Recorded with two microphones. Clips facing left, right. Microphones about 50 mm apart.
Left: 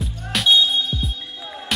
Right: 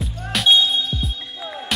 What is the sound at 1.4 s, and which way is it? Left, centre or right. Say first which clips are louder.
Music: right 3 dB; centre.